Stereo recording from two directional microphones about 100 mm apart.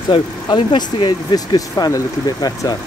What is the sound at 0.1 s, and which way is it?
Speech, 55° left (ahead or behind).